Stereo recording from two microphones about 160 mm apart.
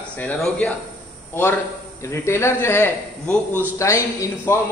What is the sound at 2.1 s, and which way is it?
A man's voice, 15° left (ahead or behind).